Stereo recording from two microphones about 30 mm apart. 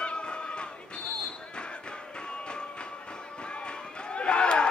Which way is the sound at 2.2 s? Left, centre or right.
Left.